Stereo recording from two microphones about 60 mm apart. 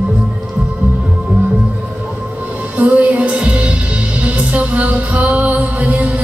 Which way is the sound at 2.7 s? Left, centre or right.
Right.